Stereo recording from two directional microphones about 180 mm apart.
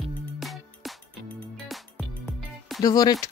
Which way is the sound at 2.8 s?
20° left (ahead or behind).